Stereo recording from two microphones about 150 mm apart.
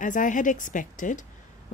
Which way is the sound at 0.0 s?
60° left (ahead or behind).